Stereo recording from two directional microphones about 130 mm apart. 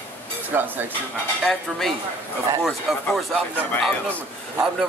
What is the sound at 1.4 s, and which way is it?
Speech, centre (ahead or behind).